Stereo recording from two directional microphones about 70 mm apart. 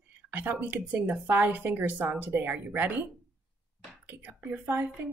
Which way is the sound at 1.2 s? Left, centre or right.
Right.